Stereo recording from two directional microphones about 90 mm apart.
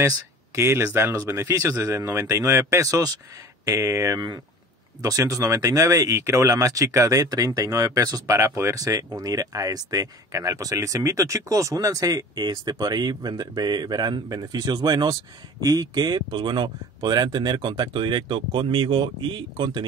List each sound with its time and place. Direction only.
0.6 s speech: 30° right (ahead or behind); by 19.8 s 60° right (ahead or behind)